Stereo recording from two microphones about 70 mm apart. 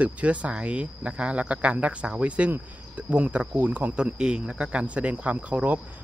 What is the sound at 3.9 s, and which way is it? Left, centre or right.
Speech, centre.